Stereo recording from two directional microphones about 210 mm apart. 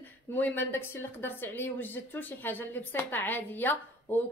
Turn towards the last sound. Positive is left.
turn(degrees=10)  # may be behind; listen again after turning